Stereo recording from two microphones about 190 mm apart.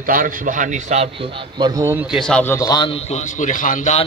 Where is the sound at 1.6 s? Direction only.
15° right (ahead or behind); by 4.0 s 40° left (ahead or behind).